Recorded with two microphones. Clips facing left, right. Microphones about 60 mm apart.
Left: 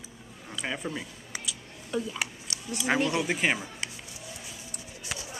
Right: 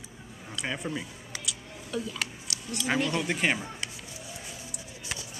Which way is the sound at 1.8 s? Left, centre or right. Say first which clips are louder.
Left 2 dB; centre.